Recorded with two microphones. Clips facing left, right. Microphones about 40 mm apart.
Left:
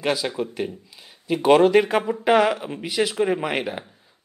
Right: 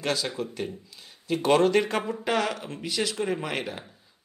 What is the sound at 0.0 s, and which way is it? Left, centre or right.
Speech, centre.